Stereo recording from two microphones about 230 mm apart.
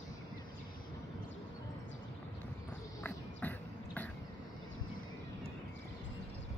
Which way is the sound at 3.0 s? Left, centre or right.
Centre.